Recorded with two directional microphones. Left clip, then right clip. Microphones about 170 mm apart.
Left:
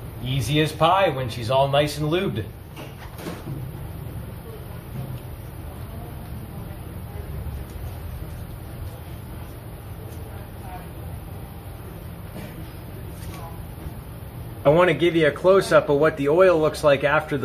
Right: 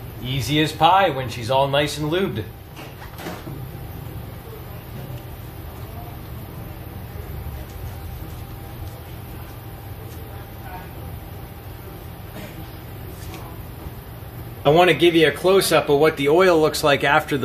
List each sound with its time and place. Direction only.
0.3 s speech: 5° left (ahead or behind)
14.6 s speech: 20° right (ahead or behind)